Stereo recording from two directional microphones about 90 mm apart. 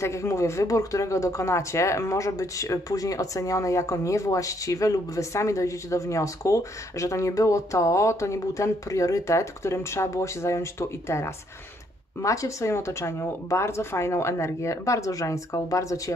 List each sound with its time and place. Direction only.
0.0 s speech: 30° left (ahead or behind)